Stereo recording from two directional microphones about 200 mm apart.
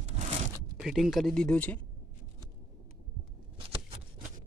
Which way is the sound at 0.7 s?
Centre (ahead or behind).